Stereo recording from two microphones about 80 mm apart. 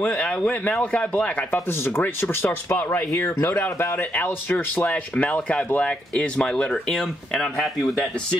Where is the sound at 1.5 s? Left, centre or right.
Left.